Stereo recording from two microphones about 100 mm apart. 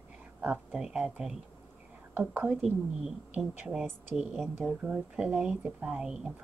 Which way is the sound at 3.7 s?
5° right (ahead or behind).